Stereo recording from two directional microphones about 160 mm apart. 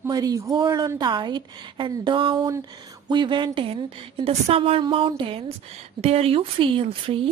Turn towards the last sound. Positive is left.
turn(degrees=-35)  # may be behind; listen again after turning